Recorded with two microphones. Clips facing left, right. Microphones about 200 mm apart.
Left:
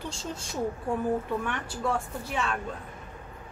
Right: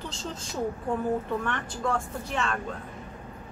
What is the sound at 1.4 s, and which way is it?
A woman's voice, 5° left (ahead or behind).